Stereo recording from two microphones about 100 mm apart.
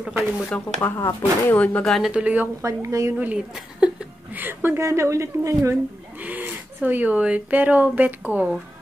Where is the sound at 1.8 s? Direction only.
Centre (ahead or behind).